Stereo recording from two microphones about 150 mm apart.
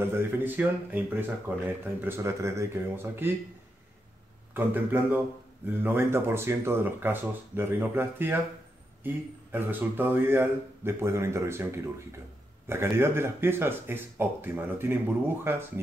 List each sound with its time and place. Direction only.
0.0 s speech: 15° right (ahead or behind)
4.6 s speech: 10° right (ahead or behind)